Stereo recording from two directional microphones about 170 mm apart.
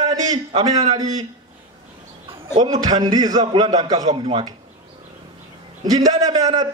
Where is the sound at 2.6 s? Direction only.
25° right (ahead or behind).